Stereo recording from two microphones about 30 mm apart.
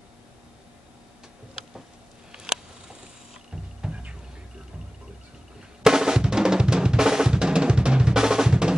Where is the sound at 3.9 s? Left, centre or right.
Centre.